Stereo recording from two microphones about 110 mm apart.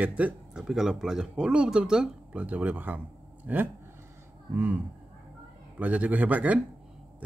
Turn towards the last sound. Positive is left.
turn(degrees=-15)  # may be behind; listen again after turning